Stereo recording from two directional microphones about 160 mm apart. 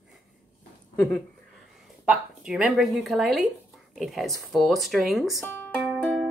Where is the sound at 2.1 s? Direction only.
5° right (ahead or behind).